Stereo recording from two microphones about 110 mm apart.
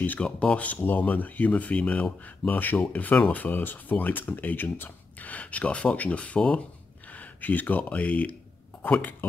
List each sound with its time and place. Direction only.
0.0 s speech: 15° left (ahead or behind)